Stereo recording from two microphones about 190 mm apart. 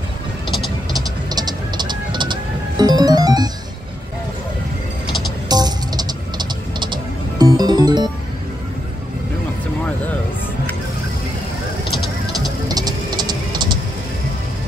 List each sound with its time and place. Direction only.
0.9 s music: 20° right (ahead or behind)
5.5 s music: 20° right (ahead or behind)
12.6 s music: 20° right (ahead or behind)